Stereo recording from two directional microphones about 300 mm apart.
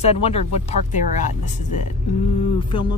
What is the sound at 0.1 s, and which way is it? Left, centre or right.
Speech, centre.